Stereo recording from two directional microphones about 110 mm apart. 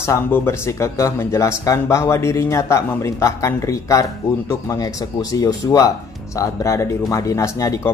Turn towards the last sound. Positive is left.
turn(degrees=30)  # may be behind; listen again after turning